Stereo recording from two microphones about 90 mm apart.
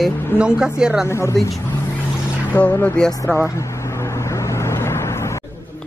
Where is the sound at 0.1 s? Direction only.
25° left (ahead or behind).